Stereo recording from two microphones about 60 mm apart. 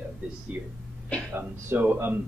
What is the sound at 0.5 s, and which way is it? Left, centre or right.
Speech, centre.